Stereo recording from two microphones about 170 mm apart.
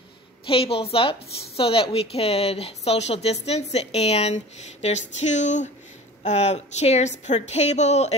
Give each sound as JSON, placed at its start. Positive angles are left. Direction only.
{"t": 0.5, "sound": "a woman's voice", "side_deg": 35}